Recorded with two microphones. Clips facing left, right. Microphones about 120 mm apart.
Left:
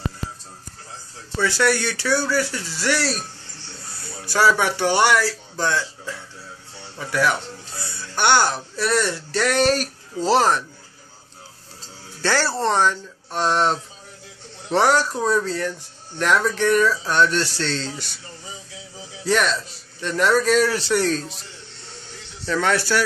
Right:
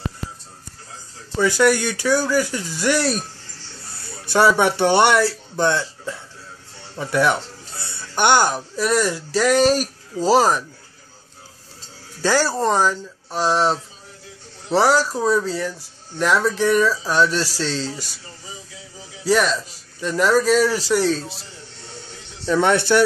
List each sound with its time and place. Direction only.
1.4 s speech: 15° right (ahead or behind)
4.3 s speech: 25° right (ahead or behind)
12.2 s speech: 10° right (ahead or behind)
17.8 s speech: 40° right (ahead or behind)
19.2 s speech: 10° right (ahead or behind)
22.5 s speech: 20° right (ahead or behind)